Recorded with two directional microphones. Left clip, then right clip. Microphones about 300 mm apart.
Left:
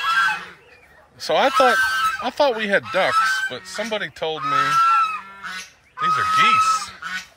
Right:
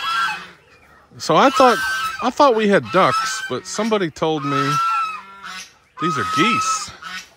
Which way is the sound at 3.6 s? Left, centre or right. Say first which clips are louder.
Right 5 dB; right.